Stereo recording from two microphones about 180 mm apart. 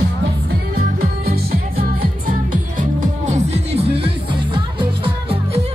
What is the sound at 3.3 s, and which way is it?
Music, 35° right (ahead or behind).